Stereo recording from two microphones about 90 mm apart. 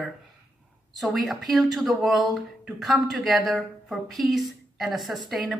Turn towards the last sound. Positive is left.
turn(degrees=0)  # may be behind; listen again after turning